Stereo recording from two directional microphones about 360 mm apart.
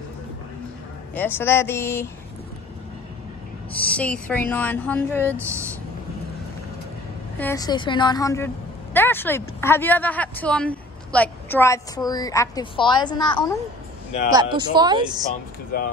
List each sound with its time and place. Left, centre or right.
1.1 s speech: centre
3.7 s speech: centre
7.3 s speech: centre
14.3 s speech: centre
15.7 s speech: left